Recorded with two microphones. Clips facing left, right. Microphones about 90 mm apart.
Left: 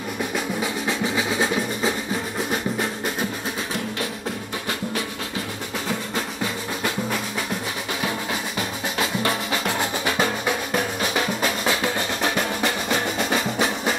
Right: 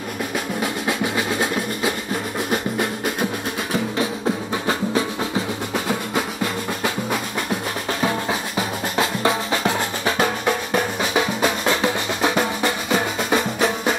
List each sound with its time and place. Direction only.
0.6 s music: 5° right (ahead or behind)
5.9 s percussion: 5° right (ahead or behind)
10.1 s drum: centre (ahead or behind)
12.6 s music: centre (ahead or behind)